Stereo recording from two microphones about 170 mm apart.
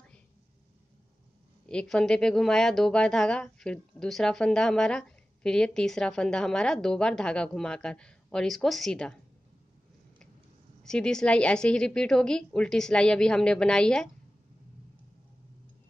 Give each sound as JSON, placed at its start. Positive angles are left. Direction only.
{"t": 1.7, "sound": "speech", "side_deg": 5}
{"t": 10.8, "sound": "speech", "side_deg": 5}